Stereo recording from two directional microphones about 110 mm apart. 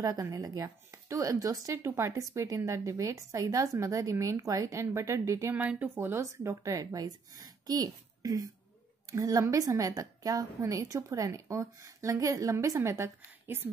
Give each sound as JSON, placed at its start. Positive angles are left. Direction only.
{"t": 0.0, "sound": "speech", "side_deg": -35}
{"t": 5.6, "sound": "a child's voice", "side_deg": -15}